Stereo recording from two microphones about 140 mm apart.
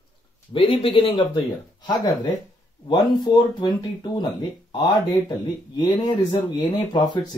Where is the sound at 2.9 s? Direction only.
30° left (ahead or behind).